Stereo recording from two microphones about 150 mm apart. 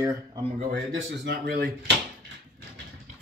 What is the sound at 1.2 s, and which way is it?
Speech, 90° right.